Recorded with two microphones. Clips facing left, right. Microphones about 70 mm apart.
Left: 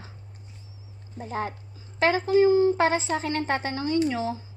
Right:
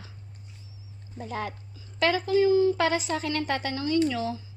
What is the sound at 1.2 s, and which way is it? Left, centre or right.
Speech, left.